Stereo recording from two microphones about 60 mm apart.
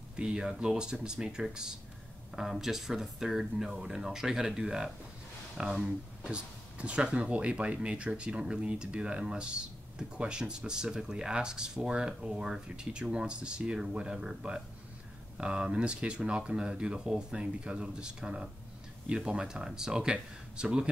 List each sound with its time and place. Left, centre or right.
0.1 s speech: centre